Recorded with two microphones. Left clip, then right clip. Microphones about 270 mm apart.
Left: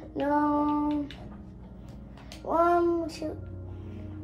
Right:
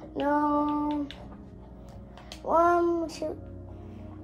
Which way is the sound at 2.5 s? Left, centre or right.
Right.